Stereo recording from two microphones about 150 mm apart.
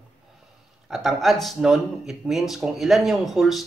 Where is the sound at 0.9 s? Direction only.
Centre (ahead or behind).